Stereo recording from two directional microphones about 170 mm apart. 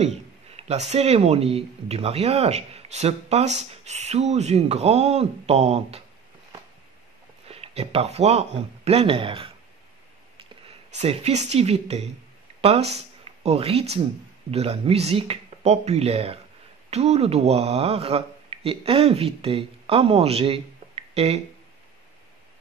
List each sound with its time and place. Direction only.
0.0 s speech: 40° right (ahead or behind)
7.4 s speech: 35° right (ahead or behind)